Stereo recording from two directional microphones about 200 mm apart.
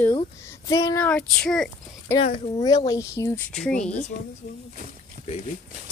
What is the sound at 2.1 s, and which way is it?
A woman's voice, 30° left (ahead or behind).